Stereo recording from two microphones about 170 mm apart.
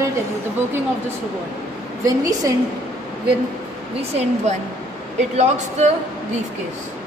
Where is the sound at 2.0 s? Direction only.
20° right (ahead or behind).